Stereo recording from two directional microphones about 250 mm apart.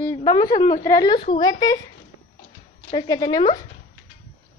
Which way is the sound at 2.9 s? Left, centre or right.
Centre.